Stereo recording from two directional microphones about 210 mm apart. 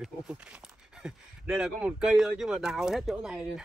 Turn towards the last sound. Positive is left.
turn(degrees=0)  # may be behind; listen again after turning